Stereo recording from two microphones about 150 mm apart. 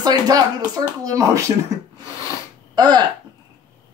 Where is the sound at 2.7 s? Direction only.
30° right (ahead or behind).